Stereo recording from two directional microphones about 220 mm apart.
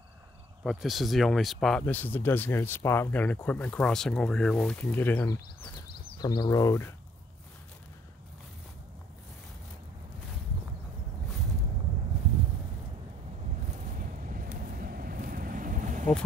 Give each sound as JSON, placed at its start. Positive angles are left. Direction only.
{"t": 0.7, "sound": "speech", "side_deg": 0}
{"t": 6.1, "sound": "speech", "side_deg": 20}
{"t": 13.7, "sound": "vehicle", "side_deg": -35}